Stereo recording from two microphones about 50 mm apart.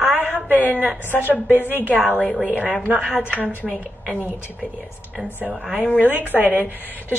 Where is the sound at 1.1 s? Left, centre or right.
Left.